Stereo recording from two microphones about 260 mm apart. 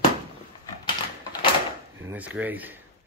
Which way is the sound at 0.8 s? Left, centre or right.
Centre.